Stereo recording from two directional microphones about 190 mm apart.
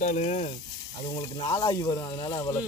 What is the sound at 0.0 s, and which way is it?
Speech, 40° left (ahead or behind).